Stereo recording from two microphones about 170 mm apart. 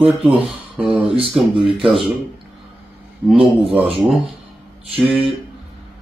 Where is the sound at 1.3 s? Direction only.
Centre (ahead or behind).